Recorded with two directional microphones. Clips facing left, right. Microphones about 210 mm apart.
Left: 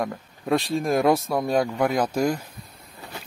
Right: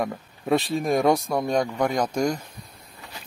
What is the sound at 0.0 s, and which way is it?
Speech, centre (ahead or behind).